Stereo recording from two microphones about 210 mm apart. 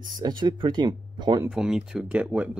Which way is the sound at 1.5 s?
5° right (ahead or behind).